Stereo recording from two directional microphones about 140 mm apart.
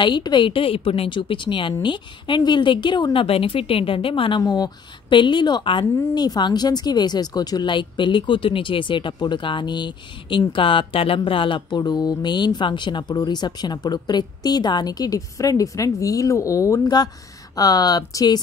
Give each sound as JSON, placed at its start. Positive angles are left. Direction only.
{"t": 0.0, "sound": "speech", "side_deg": 35}
{"t": 4.4, "sound": "speech", "side_deg": 25}